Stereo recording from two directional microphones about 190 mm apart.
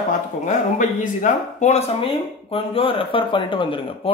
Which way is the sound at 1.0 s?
40° left (ahead or behind).